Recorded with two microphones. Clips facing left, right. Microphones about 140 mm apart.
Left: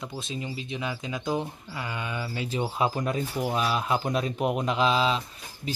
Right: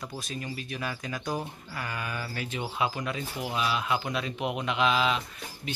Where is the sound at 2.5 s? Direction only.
35° left (ahead or behind).